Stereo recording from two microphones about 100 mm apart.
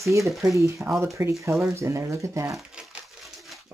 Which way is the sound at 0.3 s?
Centre (ahead or behind).